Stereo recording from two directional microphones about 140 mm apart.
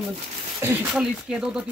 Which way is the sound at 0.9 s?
5° right (ahead or behind).